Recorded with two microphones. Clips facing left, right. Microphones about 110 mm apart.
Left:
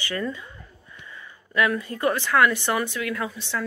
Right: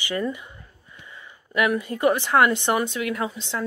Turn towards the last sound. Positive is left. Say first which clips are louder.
# right 1 dB
turn(degrees=-20)  # may be behind; listen again after turning